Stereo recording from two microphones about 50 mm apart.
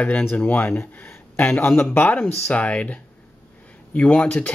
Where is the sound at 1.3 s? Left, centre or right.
Left.